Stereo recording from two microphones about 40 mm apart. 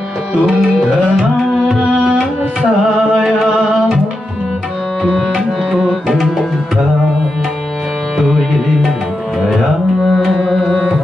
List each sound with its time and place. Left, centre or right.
0.6 s tabla: centre
1.8 s tabla: centre
3.0 s music: right
5.1 s tabla: centre
8.3 s tabla: centre
10.0 s tabla: centre